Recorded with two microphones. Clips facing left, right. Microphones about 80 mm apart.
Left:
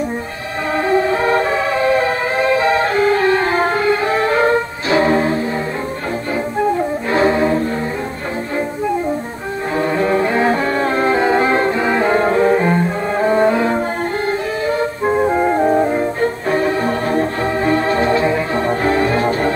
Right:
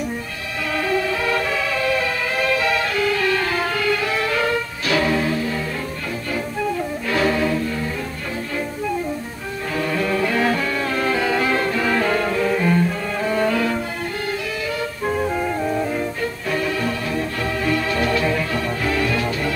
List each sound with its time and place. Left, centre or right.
0.8 s a sound: left
6.6 s music: left
9.8 s music: left